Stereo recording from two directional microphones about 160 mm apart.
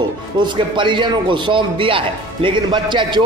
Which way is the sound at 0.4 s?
30° right (ahead or behind).